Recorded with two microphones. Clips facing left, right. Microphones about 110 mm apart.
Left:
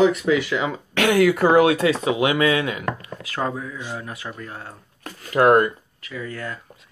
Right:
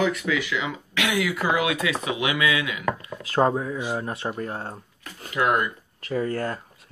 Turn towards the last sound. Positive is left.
turn(degrees=-40)  # may be behind; listen again after turning